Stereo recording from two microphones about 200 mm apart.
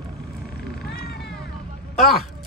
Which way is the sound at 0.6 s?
55° left (ahead or behind).